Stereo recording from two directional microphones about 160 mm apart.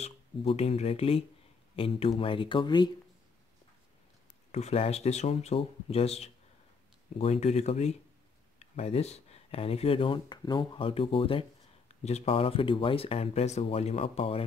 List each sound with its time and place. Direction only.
0.0 s speech: 40° left (ahead or behind)
4.5 s speech: 45° left (ahead or behind)